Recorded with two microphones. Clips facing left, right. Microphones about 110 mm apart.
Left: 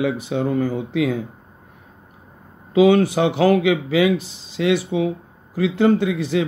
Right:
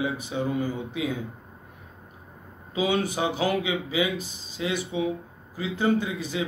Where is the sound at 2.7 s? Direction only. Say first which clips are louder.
Left 11 dB; 65° left (ahead or behind).